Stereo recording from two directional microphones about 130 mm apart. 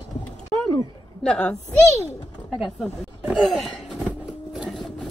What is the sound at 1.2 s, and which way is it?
Speech, 5° left (ahead or behind).